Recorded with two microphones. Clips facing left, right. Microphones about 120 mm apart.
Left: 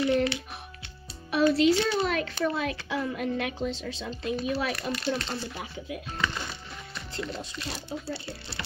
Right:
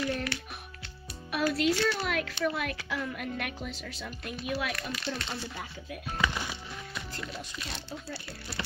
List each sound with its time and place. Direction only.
0.0 s music: 25° left (ahead or behind)
1.7 s a woman's voice: 20° left (ahead or behind)
4.7 s speech: centre (ahead or behind)
6.1 s music: 10° right (ahead or behind)
7.2 s speech: centre (ahead or behind)
8.1 s a woman's voice: 30° left (ahead or behind)